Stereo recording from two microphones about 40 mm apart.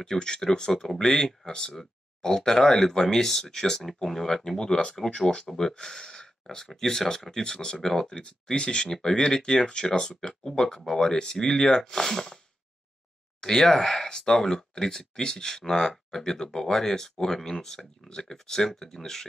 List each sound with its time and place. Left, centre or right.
0.0 s speech: centre
8.2 s speech: left; by 12.4 s centre
13.4 s speech: centre